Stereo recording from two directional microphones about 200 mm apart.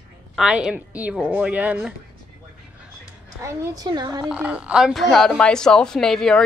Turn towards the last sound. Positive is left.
turn(degrees=0)  # may be behind; listen again after turning